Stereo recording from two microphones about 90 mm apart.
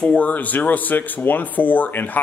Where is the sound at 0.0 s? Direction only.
15° left (ahead or behind).